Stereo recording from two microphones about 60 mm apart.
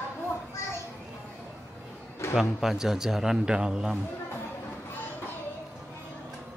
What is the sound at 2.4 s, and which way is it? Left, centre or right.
A man's voice, centre.